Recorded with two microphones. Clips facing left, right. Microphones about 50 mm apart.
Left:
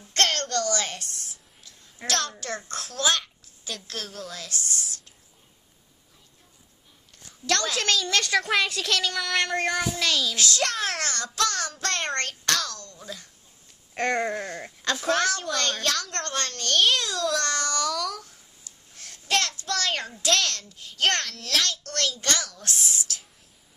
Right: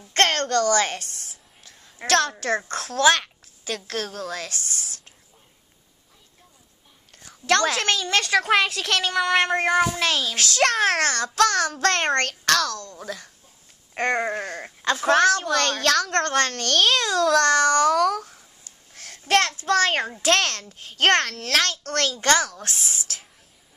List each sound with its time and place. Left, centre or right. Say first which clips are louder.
0.1 s a sound: right 5 dB; right
2.0 s a child's voice: right 8 dB; right
7.8 s a child's voice: right 2 dB; right
9.1 s a child's voice: right 6 dB; right
9.9 s a child's voice: right 2 dB; right
13.9 s a sound: right 2 dB; centre
14.3 s a child's voice: right 2 dB; right
18.9 s a sound: right 6 dB; right
19.6 s a child's voice: right 8 dB; right